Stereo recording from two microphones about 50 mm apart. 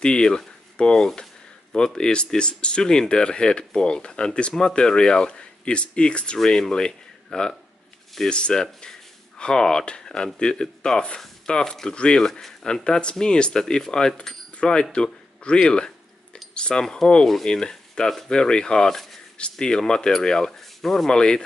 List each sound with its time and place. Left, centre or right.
0.0 s speech: centre
12.2 s speech: centre
16.5 s cutlery: centre
16.8 s speech: centre